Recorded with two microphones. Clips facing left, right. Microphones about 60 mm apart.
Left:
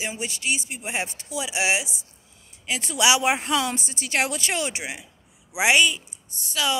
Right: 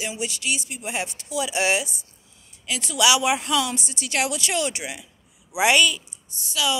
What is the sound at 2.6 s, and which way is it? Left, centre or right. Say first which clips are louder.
Speech: right 1 dB; left.